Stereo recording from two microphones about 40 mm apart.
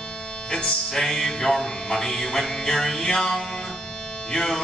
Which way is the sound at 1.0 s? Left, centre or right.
Centre.